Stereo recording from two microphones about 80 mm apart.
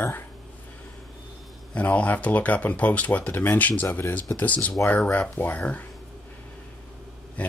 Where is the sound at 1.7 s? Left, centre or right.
Centre.